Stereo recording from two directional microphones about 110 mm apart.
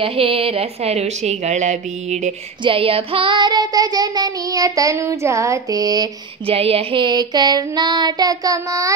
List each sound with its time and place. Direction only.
0.0 s a woman's voice: 60° right (ahead or behind); by 2.3 s 90° right
2.6 s child singing: 55° right (ahead or behind); by 6.0 s 35° right (ahead or behind)
6.4 s child singing: 60° right (ahead or behind); by 8.9 s 30° right (ahead or behind)